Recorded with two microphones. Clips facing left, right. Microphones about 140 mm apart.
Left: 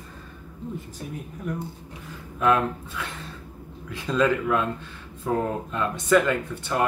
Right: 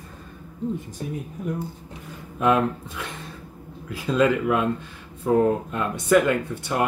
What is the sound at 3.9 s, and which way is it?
Speech, 10° right (ahead or behind).